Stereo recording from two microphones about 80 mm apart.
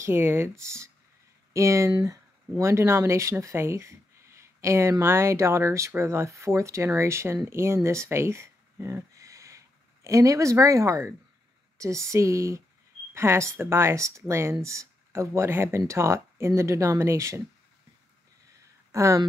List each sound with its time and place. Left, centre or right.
0.0 s speech: right
18.9 s speech: right